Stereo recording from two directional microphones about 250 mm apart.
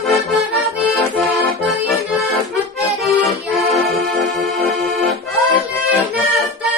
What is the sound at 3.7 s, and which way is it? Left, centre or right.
Accordion, centre.